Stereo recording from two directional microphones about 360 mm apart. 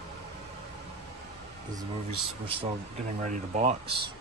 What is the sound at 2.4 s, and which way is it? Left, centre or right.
Speech, centre.